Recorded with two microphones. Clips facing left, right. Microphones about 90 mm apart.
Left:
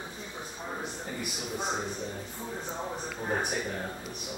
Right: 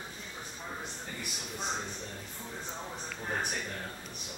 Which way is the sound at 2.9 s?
15° left (ahead or behind).